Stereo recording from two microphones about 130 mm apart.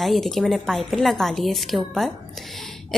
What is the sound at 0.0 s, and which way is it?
A woman's voice, centre (ahead or behind).